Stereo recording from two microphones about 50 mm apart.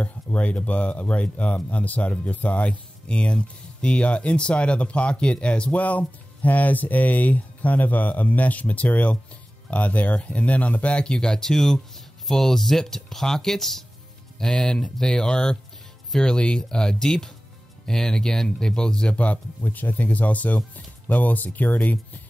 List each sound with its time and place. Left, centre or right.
0.0 s speech: left; by 13.8 s centre
14.4 s speech: centre
19.1 s speech: left
21.7 s speech: left